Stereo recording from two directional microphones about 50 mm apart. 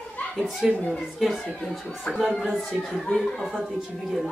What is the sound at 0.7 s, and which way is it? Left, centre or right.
Speech, left.